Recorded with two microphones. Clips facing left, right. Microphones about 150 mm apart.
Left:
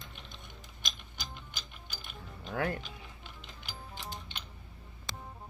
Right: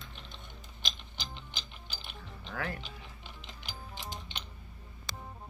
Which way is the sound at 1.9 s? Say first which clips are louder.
Even; 50° left (ahead or behind).